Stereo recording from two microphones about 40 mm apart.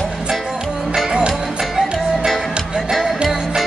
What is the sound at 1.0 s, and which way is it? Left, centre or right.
Music, right.